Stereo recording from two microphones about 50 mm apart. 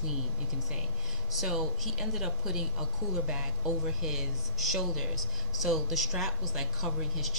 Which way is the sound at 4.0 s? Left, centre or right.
Centre.